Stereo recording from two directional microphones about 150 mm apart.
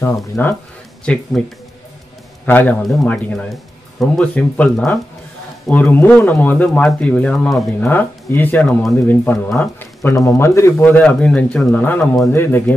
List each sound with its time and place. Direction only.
0.0 s speech: 15° left (ahead or behind)
2.4 s speech: 15° left (ahead or behind)
2.8 s speech: centre (ahead or behind)
7.8 s speech: 15° left (ahead or behind)